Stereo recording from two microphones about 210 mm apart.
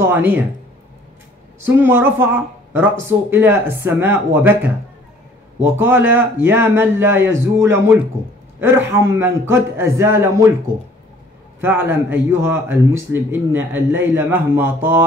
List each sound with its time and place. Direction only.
0.0 s speech: 10° right (ahead or behind)
1.7 s speech: 10° right (ahead or behind)
11.6 s speech: 10° right (ahead or behind)